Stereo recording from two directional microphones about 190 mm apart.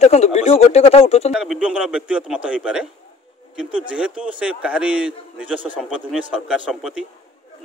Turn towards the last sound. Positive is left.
turn(degrees=-5)  # may be behind; listen again after turning